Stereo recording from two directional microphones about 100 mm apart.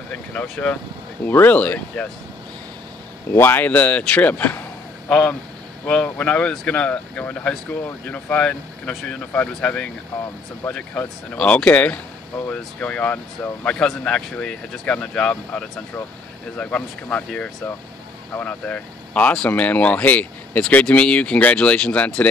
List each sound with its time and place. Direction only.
0.1 s speech: 15° left (ahead or behind)
3.3 s speech: 20° left (ahead or behind)
6.0 s speech: 10° left (ahead or behind)